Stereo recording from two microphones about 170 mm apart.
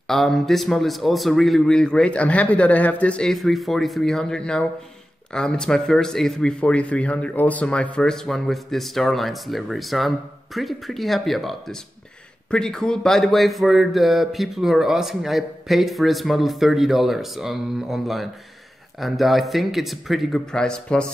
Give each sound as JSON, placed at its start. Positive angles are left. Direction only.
{"t": 0.1, "sound": "speech", "side_deg": 0}